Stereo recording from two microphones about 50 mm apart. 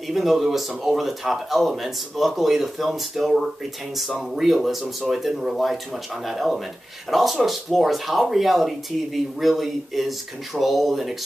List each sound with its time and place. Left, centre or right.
0.1 s speech: centre